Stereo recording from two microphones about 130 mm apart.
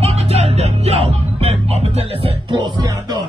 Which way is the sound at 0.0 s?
55° right (ahead or behind).